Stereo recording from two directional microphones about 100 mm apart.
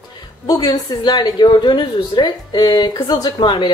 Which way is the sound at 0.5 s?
40° left (ahead or behind).